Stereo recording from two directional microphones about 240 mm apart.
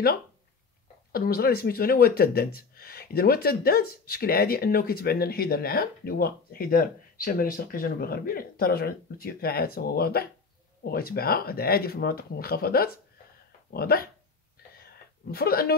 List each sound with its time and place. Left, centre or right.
1.1 s speech: left
15.3 s speech: left